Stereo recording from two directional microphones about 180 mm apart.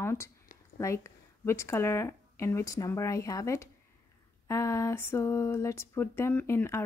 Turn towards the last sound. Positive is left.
turn(degrees=15)  # may be behind; listen again after turning